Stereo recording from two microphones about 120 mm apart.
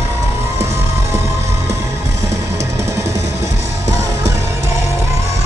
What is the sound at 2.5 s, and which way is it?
Music, 25° right (ahead or behind).